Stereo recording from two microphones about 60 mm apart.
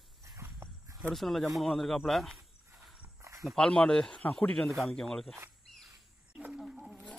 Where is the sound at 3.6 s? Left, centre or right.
Centre.